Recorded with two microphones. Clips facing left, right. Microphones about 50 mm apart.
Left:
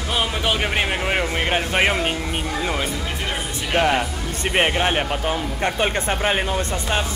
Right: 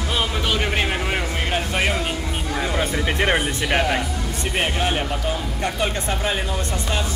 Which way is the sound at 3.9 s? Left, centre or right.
Left.